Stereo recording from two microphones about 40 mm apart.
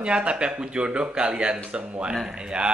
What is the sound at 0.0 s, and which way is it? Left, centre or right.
Speech, right.